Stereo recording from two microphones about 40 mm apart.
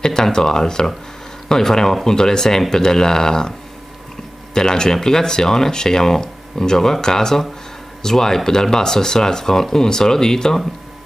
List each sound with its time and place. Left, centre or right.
0.0 s speech: centre
4.6 s speech: centre